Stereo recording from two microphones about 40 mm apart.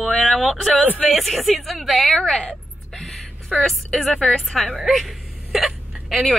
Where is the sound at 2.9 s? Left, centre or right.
Centre.